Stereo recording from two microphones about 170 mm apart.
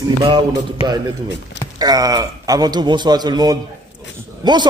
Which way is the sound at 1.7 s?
20° right (ahead or behind).